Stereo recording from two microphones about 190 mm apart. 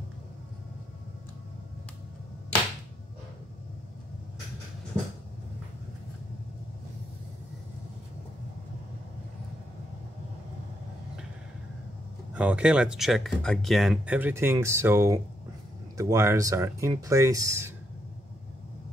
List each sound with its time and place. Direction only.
12.4 s speech: 5° right (ahead or behind)